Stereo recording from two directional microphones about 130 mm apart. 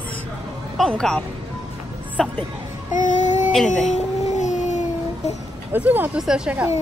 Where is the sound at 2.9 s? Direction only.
75° left (ahead or behind).